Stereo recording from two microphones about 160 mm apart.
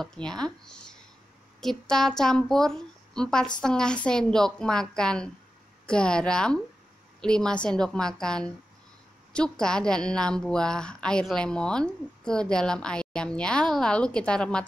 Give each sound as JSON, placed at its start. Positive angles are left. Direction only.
{"t": 0.0, "sound": "a woman's voice", "side_deg": 5}
{"t": 1.6, "sound": "a woman's voice", "side_deg": 5}